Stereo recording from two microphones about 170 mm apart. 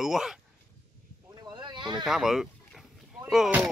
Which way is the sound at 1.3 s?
25° right (ahead or behind).